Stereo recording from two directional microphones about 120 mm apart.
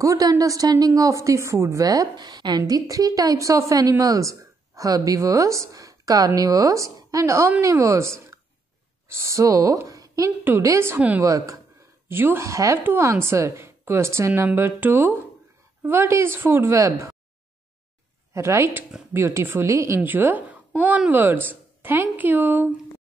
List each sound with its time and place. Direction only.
0.0 s a woman's voice: 30° right (ahead or behind)
11.2 s a woman's voice: 30° right (ahead or behind)
18.3 s a woman's voice: 25° right (ahead or behind)